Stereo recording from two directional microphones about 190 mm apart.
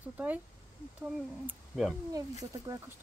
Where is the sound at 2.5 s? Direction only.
20° right (ahead or behind).